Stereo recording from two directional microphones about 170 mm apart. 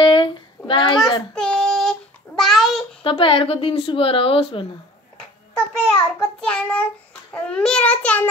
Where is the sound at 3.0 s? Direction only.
30° left (ahead or behind).